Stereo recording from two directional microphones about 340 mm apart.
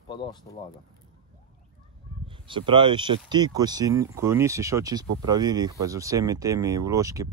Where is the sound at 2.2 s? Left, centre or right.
Centre.